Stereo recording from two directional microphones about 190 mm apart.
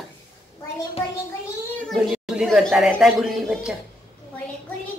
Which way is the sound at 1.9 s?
Centre (ahead or behind).